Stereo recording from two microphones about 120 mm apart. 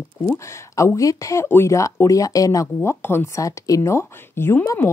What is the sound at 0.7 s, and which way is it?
Speech, 25° left (ahead or behind).